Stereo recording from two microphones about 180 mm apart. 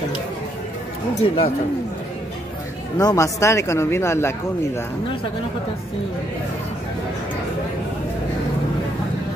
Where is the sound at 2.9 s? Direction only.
20° left (ahead or behind).